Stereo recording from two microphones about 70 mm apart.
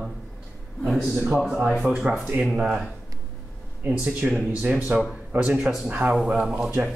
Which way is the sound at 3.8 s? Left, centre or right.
Right.